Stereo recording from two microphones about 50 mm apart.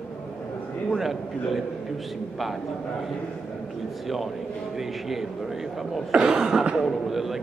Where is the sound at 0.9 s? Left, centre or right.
Centre.